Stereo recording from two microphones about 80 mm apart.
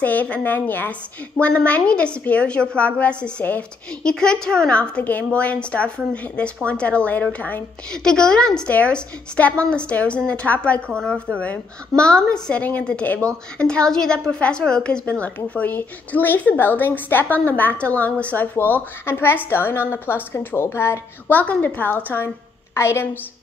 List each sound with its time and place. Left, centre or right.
0.0 s a woman's voice: left
7.9 s a woman's voice: centre; by 21.4 s left
21.4 s a woman's voice: centre